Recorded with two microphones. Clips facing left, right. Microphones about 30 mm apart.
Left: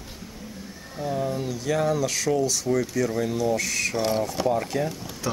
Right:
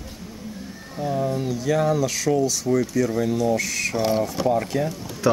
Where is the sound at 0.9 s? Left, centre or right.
Centre.